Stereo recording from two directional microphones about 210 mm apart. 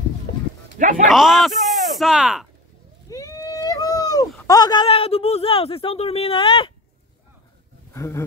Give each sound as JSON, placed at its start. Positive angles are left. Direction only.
{"t": 0.3, "sound": "a sound", "side_deg": 50}
{"t": 0.7, "sound": "speech", "side_deg": -35}
{"t": 1.0, "sound": "speech", "side_deg": 0}
{"t": 3.1, "sound": "a sound", "side_deg": 15}
{"t": 4.5, "sound": "speech", "side_deg": 20}
{"t": 7.9, "sound": "speech", "side_deg": 15}